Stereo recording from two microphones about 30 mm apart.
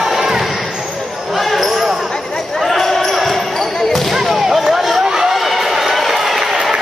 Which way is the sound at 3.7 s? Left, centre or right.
Centre.